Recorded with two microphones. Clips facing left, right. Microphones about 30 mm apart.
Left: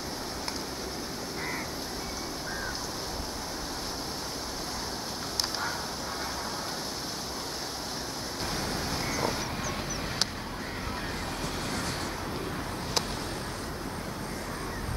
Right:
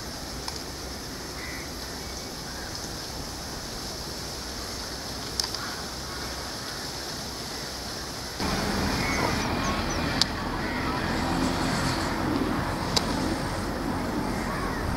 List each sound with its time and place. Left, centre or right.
8.4 s vehicle: right